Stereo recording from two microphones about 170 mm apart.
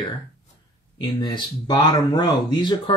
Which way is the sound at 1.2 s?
25° left (ahead or behind).